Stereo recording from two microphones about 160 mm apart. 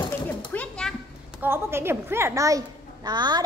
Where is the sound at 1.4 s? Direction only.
15° right (ahead or behind).